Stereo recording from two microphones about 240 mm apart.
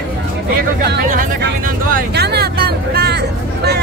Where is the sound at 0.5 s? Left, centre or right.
Right.